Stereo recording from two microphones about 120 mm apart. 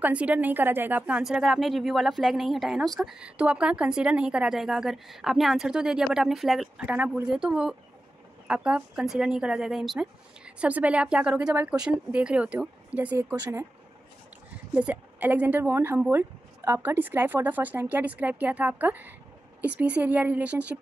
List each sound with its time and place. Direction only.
0.0 s a woman's voice: 10° right (ahead or behind)
14.7 s speech: 10° right (ahead or behind)